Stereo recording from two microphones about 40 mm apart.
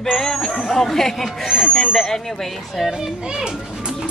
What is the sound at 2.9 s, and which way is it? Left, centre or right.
Speech, centre.